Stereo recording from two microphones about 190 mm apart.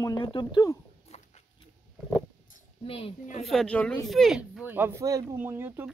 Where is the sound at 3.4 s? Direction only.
Centre (ahead or behind).